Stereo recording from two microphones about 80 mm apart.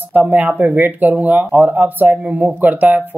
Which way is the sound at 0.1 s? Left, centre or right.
Right.